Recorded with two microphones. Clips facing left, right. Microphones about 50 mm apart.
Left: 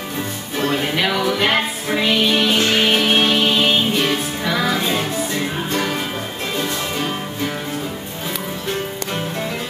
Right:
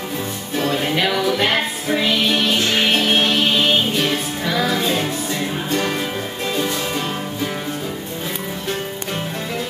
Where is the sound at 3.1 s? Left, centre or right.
Centre.